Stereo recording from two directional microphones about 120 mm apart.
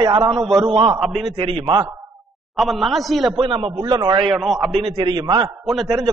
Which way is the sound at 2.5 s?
Centre (ahead or behind).